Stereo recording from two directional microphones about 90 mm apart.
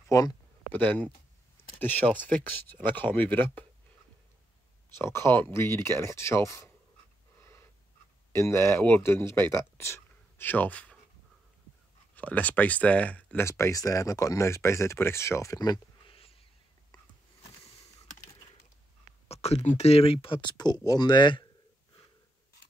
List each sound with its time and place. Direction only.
0.1 s speech: 40° left (ahead or behind)
0.7 s speech: 20° left (ahead or behind)
5.0 s speech: 30° left (ahead or behind)
7.3 s breathing: 30° left (ahead or behind)
8.3 s speech: 35° left (ahead or behind); by 11.0 s 15° left (ahead or behind)
12.2 s speech: 15° left (ahead or behind)
13.4 s speech: 30° left (ahead or behind)
16.1 s a sound: 90° left
20.0 s speech: 90° left; by 21.5 s 60° left (ahead or behind)